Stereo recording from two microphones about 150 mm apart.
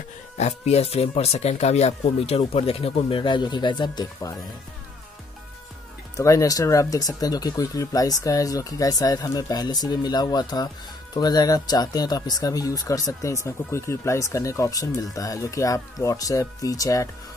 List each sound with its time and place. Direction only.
0.4 s speech: 45° left (ahead or behind); by 4.4 s 25° left (ahead or behind)
6.1 s speech: 20° left (ahead or behind)